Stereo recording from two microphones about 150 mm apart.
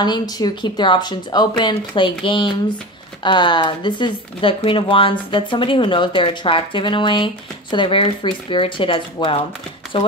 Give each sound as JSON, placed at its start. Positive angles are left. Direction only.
{"t": 0.0, "sound": "speech", "side_deg": 30}